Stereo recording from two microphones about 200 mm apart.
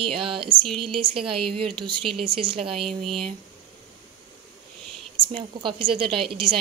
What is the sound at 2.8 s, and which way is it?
Speech, centre (ahead or behind).